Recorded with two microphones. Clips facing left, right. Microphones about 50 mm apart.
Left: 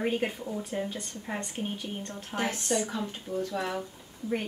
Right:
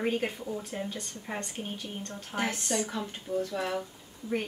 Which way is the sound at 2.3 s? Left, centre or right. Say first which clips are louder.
Left 1 dB; centre.